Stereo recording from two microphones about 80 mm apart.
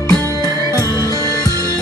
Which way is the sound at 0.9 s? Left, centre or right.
Left.